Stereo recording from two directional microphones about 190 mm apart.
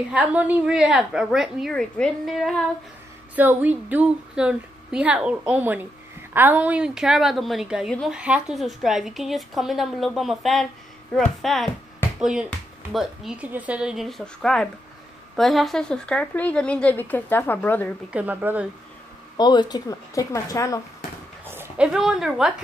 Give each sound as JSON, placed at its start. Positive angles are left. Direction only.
{"t": 0.1, "sound": "a woman's voice", "side_deg": -5}
{"t": 18.1, "sound": "a woman's voice", "side_deg": -10}
{"t": 19.3, "sound": "a woman's voice", "side_deg": 20}
{"t": 21.5, "sound": "a woman's voice", "side_deg": -10}